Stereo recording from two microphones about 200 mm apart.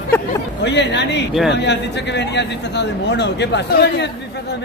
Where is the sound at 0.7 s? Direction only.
60° left (ahead or behind).